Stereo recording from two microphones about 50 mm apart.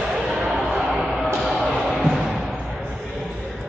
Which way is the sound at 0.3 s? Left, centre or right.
Centre.